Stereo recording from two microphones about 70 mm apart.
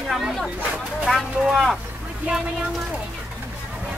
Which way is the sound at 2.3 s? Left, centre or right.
Centre.